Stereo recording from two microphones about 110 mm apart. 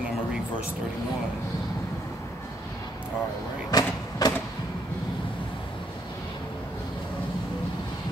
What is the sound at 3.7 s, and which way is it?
Vehicle, 35° left (ahead or behind).